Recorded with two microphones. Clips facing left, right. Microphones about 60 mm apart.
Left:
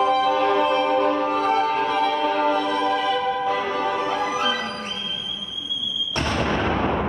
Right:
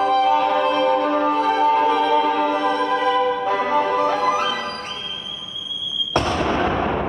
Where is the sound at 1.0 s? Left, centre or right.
Right.